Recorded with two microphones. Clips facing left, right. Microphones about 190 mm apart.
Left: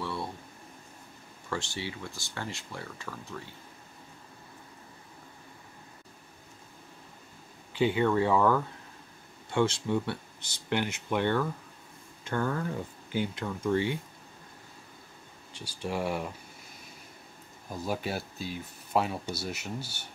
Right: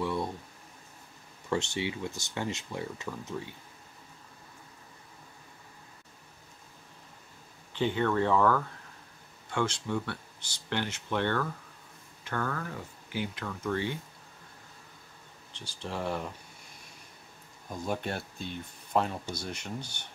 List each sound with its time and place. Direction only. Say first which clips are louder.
0.0 s a sound: right 4 dB; 15° right (ahead or behind)
1.5 s speech: right 4 dB; 20° right (ahead or behind)
7.7 s speech: left 3 dB; 10° left (ahead or behind)
12.3 s speech: left 4 dB; 25° left (ahead or behind)
15.5 s speech: left 4 dB; 10° left (ahead or behind)
17.6 s speech: left 1 dB; 5° left (ahead or behind)